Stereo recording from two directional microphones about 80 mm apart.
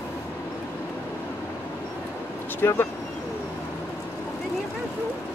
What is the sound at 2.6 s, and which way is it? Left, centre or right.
Speech, left.